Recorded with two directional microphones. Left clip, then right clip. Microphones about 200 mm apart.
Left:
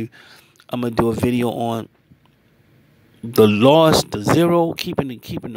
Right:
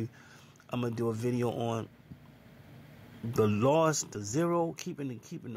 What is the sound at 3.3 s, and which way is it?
Speech, 40° left (ahead or behind).